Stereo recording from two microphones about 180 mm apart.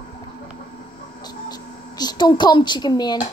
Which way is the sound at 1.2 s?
20° left (ahead or behind).